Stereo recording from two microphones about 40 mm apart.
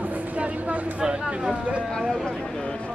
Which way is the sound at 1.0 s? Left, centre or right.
Right.